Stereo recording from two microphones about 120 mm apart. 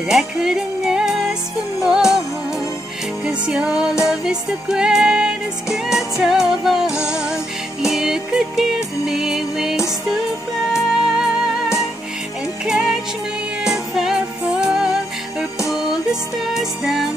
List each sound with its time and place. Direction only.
0.1 s music: 5° right (ahead or behind)
3.3 s music: 5° right (ahead or behind)